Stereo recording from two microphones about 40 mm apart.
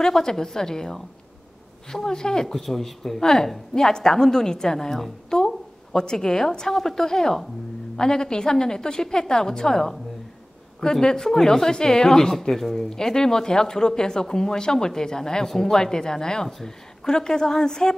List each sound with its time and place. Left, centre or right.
0.0 s speech: centre